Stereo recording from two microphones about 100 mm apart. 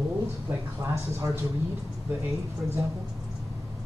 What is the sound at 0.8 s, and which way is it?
Speech, 35° right (ahead or behind).